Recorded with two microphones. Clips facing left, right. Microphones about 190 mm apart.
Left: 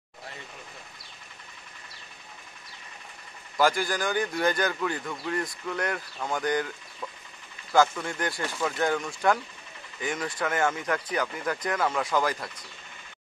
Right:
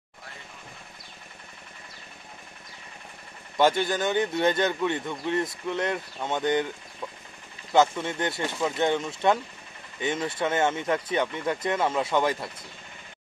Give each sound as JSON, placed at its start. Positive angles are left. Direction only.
{"t": 3.5, "sound": "a man's voice", "side_deg": -25}